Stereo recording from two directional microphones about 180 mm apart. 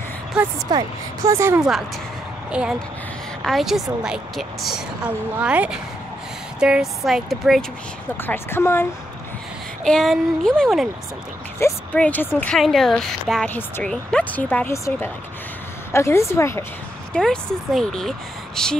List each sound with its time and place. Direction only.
0.3 s speech: 5° right (ahead or behind)
0.7 s a woman's voice: 20° right (ahead or behind)
1.6 s a woman's voice: centre (ahead or behind)
8.2 s speech: 10° left (ahead or behind)
9.8 s a woman's voice: 5° left (ahead or behind)
17.1 s a woman's voice: 5° left (ahead or behind)